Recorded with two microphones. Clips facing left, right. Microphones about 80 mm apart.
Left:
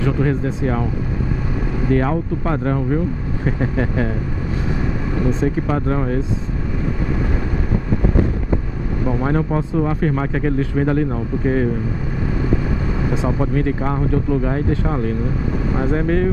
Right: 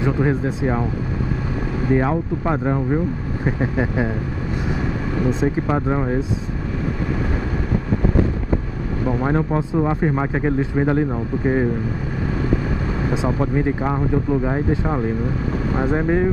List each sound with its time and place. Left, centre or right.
0.0 s speech: right
1.9 s speech: centre
5.4 s speech: centre
9.0 s speech: centre; by 11.6 s right
13.8 s speech: centre